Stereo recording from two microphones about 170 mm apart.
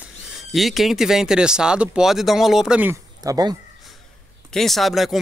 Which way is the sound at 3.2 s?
20° right (ahead or behind).